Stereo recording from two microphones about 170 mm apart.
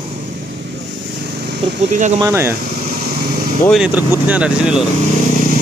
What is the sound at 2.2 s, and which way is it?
Speech, 15° right (ahead or behind).